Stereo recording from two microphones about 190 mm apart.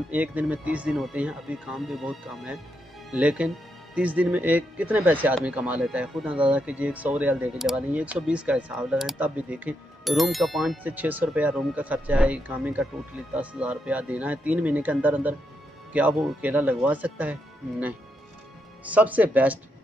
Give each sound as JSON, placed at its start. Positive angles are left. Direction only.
{"t": 0.1, "sound": "speech", "side_deg": -10}